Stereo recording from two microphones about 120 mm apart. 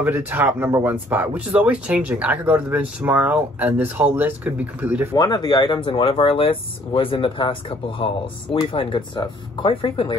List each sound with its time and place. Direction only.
0.0 s speech: 15° right (ahead or behind)
5.1 s speech: 35° left (ahead or behind)